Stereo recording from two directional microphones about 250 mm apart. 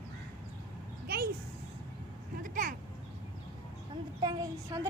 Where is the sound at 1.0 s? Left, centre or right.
Right.